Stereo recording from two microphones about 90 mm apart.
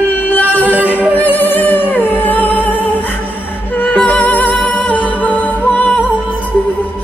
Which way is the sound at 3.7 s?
20° left (ahead or behind).